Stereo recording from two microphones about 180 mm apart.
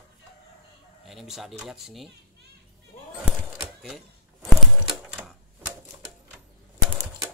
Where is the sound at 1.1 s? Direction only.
Centre (ahead or behind).